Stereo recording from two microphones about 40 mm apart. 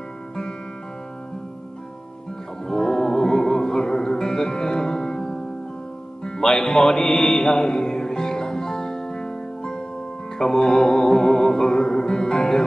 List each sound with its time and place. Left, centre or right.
2.7 s music: centre